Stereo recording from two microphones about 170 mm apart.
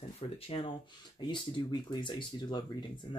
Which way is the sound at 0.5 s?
35° left (ahead or behind).